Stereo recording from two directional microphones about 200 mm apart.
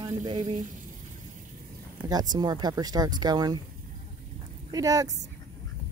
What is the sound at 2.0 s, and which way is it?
Speech, 20° right (ahead or behind).